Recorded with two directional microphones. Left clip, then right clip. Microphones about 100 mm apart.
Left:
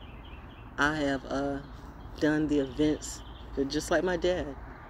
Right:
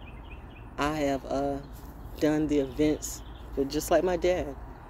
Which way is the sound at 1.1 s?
40° left (ahead or behind).